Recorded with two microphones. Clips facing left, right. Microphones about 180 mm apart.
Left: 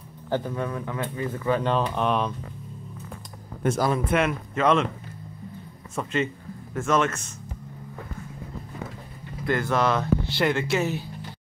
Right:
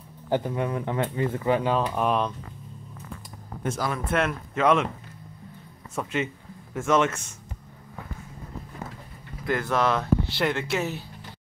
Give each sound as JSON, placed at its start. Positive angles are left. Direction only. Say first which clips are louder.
{"t": 0.3, "sound": "speech", "louder": "right 2 dB", "side_deg": -20}
{"t": 1.6, "sound": "speech", "louder": "even", "side_deg": -5}
{"t": 3.6, "sound": "speech", "louder": "left 5 dB", "side_deg": 50}
{"t": 4.1, "sound": "speech", "louder": "left 2 dB", "side_deg": 5}
{"t": 4.6, "sound": "speech", "louder": "even", "side_deg": -10}
{"t": 6.0, "sound": "speech", "louder": "left 2 dB", "side_deg": -10}
{"t": 9.5, "sound": "speech", "louder": "left 1 dB", "side_deg": 0}